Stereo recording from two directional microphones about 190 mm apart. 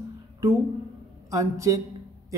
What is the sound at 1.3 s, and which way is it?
Speech, 15° right (ahead or behind).